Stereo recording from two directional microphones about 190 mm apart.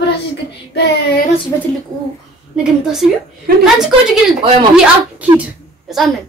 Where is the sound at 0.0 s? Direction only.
65° left (ahead or behind).